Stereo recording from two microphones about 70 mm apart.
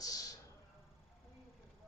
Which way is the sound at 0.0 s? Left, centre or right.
Left.